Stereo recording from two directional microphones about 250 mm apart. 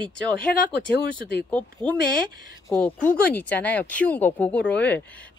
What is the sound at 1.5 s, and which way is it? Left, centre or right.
Speech, centre.